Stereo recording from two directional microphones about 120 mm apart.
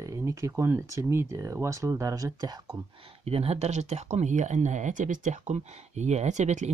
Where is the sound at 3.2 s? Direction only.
55° right (ahead or behind).